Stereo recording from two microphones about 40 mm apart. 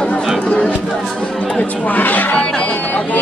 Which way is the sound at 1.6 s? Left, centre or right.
Left.